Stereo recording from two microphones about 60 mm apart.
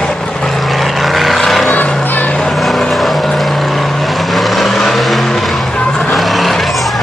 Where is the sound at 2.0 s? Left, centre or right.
Left.